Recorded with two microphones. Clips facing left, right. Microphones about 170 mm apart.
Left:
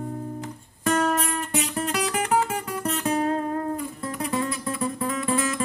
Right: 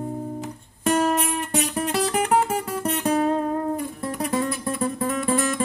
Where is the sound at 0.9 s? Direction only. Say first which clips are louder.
Right 2 dB; 20° right (ahead or behind).